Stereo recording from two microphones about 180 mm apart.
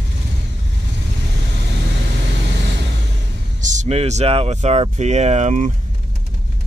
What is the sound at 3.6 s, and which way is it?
Speech, 45° right (ahead or behind).